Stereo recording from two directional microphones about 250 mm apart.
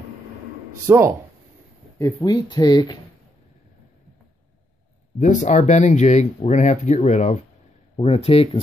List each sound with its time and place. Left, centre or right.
0.8 s speech: centre
2.0 s speech: centre
5.2 s speech: left